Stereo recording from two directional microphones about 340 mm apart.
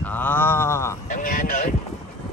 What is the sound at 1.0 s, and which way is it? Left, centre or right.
Speech, left.